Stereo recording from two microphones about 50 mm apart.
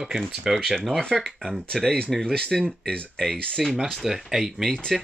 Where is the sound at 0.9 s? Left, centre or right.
Centre.